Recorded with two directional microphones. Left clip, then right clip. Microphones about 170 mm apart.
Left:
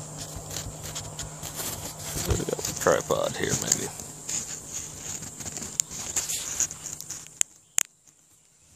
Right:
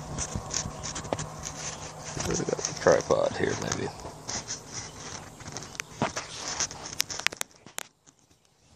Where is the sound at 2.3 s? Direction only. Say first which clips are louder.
Right 1 dB; 5° right (ahead or behind).